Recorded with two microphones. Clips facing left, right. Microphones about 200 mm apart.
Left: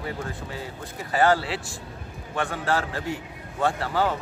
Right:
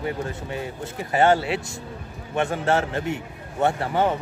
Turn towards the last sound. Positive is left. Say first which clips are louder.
# right 3 dB
turn(degrees=-25)  # may be behind; listen again after turning